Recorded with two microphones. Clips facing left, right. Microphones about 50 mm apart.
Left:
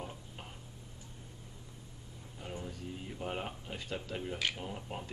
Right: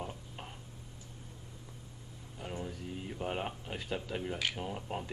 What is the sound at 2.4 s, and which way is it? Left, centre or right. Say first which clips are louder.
Speech: right 2 dB; centre.